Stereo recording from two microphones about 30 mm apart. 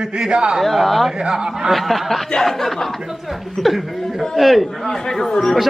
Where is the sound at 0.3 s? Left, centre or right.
Right.